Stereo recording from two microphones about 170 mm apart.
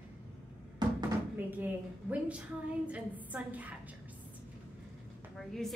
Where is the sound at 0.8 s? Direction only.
25° right (ahead or behind).